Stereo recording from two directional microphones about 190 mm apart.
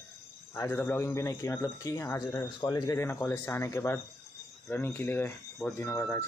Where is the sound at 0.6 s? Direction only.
10° left (ahead or behind).